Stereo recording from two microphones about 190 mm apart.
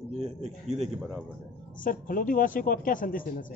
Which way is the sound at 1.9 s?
45° left (ahead or behind).